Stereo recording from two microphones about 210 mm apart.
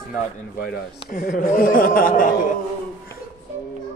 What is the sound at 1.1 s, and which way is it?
Speech, 35° left (ahead or behind).